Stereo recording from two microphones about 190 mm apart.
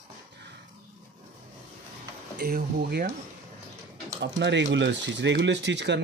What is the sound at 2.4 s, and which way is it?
Speech, 55° right (ahead or behind).